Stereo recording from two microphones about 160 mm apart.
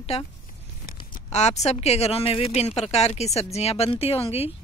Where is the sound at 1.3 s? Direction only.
45° left (ahead or behind).